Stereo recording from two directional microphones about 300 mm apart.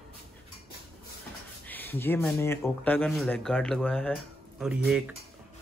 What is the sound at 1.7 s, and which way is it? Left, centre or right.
Speech, centre.